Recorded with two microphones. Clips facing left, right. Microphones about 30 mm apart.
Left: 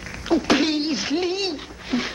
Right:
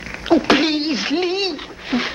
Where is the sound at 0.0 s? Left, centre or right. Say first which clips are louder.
Right 5 dB; right.